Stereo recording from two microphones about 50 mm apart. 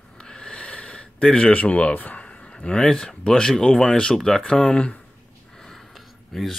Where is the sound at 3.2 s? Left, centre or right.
Centre.